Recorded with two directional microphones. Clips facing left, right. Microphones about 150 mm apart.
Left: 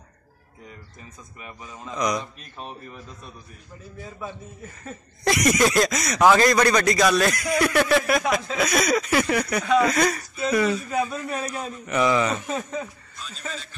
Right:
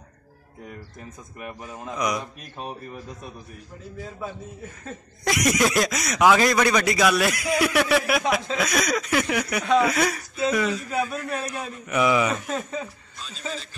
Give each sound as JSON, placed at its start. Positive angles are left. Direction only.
{"t": 1.4, "sound": "a man's voice", "side_deg": -55}
{"t": 1.8, "sound": "speech", "side_deg": -5}
{"t": 4.8, "sound": "speech", "side_deg": 0}